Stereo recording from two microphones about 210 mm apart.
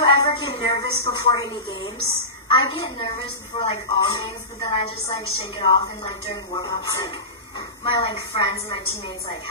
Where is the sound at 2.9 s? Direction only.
25° left (ahead or behind).